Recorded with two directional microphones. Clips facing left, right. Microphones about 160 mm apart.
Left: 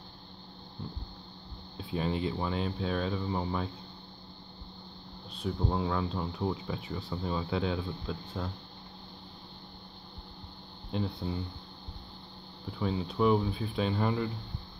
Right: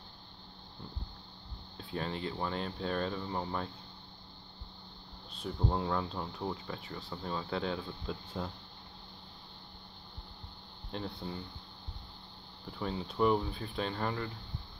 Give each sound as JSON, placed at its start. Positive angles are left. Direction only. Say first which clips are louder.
{"t": 1.8, "sound": "speech", "louder": "left 5 dB", "side_deg": 10}
{"t": 5.4, "sound": "speech", "louder": "left 3 dB", "side_deg": 0}
{"t": 10.9, "sound": "speech", "louder": "left 6 dB", "side_deg": 5}
{"t": 12.7, "sound": "speech", "louder": "left 4 dB", "side_deg": 0}